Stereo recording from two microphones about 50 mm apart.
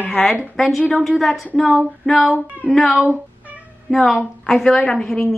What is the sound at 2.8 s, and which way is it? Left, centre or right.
A woman's voice, centre.